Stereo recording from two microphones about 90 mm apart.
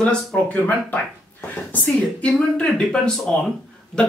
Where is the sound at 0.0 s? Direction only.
10° left (ahead or behind).